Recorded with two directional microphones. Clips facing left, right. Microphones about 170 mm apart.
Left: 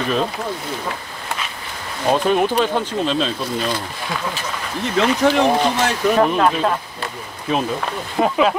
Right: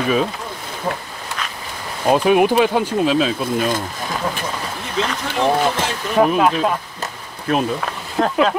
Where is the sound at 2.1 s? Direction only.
10° right (ahead or behind).